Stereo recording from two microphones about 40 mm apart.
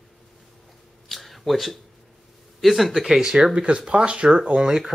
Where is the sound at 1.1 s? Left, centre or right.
Centre.